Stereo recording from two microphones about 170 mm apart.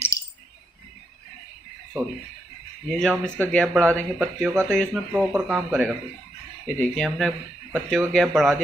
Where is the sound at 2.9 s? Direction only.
5° left (ahead or behind).